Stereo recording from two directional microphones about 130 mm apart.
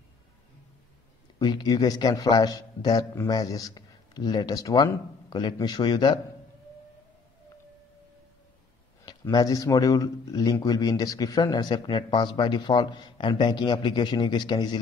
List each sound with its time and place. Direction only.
1.4 s a man's voice: 30° left (ahead or behind)
9.3 s a man's voice: 25° left (ahead or behind)